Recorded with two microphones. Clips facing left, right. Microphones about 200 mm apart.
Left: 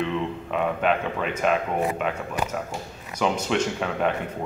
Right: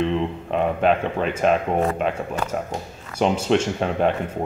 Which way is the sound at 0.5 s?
35° right (ahead or behind).